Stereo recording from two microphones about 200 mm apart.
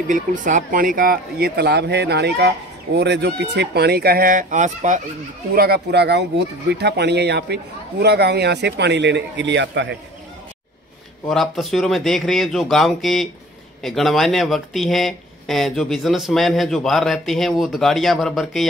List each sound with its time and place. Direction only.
0.1 s speech: 40° right (ahead or behind)
5.5 s a man's voice: 50° right (ahead or behind)
11.2 s speech: centre (ahead or behind)